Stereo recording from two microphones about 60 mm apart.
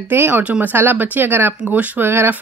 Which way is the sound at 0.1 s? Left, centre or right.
Right.